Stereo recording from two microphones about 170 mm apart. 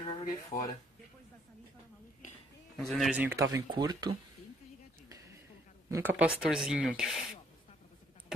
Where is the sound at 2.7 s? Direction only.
Centre (ahead or behind).